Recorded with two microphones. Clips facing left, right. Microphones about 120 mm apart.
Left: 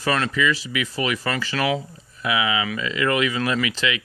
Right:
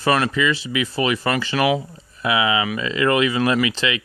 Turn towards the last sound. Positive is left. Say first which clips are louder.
# right 3 dB
turn(degrees=-30)  # may be behind; listen again after turning